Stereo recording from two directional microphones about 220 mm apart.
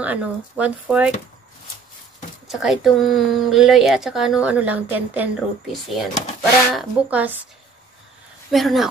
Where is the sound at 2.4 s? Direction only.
Centre (ahead or behind).